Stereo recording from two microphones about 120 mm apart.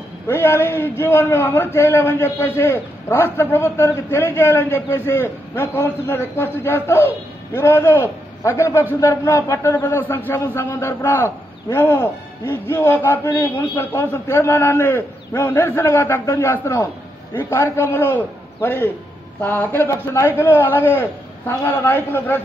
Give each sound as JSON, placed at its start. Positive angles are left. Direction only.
{"t": 0.3, "sound": "a man's voice", "side_deg": 20}